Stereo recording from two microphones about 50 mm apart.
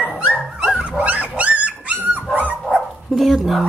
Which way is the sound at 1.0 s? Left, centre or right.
Right.